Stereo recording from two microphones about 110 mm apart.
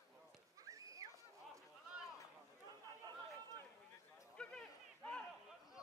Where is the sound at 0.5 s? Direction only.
30° right (ahead or behind).